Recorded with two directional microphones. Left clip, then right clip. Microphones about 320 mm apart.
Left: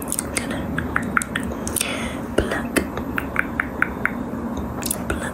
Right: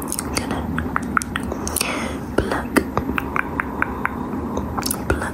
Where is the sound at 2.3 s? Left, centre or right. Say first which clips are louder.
Right 2 dB; centre.